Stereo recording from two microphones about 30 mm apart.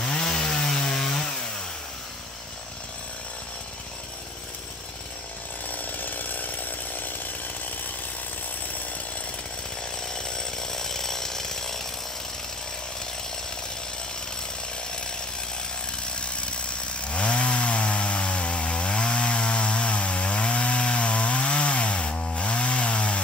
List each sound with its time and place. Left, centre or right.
0.0 s chainsaw: left
5.7 s chainsaw: left
10.1 s chainsaw: left
16.2 s chainsaw: left